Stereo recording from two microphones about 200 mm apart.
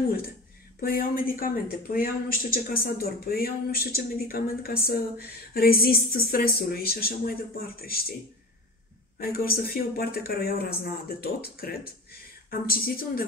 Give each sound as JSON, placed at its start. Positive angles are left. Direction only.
{"t": 0.7, "sound": "speech", "side_deg": 45}
{"t": 9.2, "sound": "speech", "side_deg": 50}